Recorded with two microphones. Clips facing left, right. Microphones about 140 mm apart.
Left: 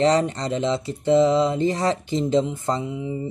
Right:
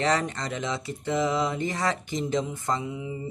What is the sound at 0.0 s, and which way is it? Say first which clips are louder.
Speech: left 7 dB; 30° left (ahead or behind).